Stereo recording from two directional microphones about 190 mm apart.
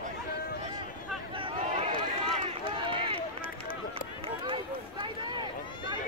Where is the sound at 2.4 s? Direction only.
30° right (ahead or behind).